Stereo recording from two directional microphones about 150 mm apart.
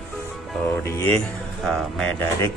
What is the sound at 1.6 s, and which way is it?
Speech, 5° left (ahead or behind).